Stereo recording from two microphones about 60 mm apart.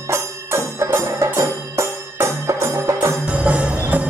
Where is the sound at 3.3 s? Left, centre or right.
Right.